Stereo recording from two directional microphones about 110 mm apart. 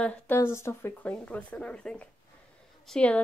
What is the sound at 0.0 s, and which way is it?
Speech, 20° left (ahead or behind).